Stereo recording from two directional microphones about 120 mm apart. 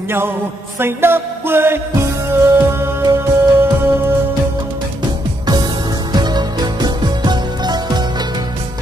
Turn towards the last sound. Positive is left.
turn(degrees=-35)  # may be behind; listen again after turning